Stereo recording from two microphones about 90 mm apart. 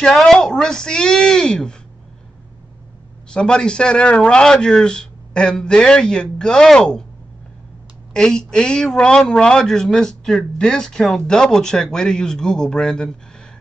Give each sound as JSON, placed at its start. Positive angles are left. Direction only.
{"t": 0.0, "sound": "a man's voice", "side_deg": 5}
{"t": 3.3, "sound": "a man's voice", "side_deg": 10}
{"t": 8.1, "sound": "a man's voice", "side_deg": 5}